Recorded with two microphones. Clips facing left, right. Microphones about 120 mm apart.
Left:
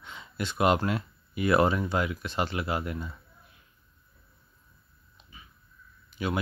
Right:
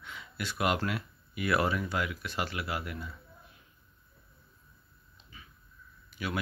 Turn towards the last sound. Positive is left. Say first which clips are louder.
# left 5 dB
turn(degrees=25)  # may be behind; listen again after turning